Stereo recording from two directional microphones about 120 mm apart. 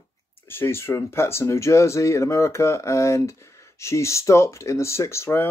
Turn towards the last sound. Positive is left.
turn(degrees=20)  # may be behind; listen again after turning